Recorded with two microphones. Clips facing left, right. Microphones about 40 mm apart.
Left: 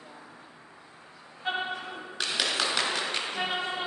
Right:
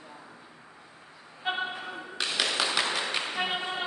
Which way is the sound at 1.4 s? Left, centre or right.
Centre.